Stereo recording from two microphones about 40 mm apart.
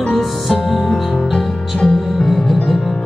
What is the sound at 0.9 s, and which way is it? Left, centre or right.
Music, centre.